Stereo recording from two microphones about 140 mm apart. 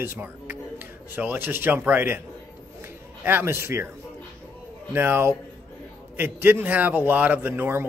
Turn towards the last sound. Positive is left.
turn(degrees=-15)  # may be behind; listen again after turning